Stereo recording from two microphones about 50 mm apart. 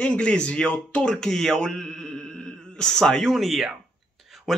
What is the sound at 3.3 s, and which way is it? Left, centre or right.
Speech, centre.